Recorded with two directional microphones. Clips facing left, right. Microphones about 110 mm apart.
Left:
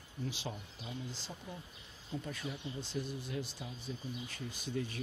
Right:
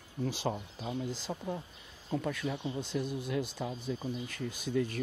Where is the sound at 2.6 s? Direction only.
50° right (ahead or behind).